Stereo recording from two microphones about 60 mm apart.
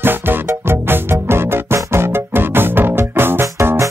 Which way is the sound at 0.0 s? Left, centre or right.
Right.